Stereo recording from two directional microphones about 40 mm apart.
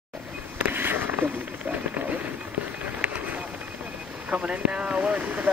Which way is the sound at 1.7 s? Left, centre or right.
Right.